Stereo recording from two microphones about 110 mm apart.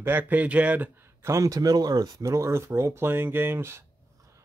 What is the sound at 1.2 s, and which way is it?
Speech, 30° right (ahead or behind).